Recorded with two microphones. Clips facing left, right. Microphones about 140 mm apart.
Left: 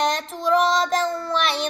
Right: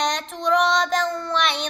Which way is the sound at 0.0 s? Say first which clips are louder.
Left 1 dB; 5° left (ahead or behind).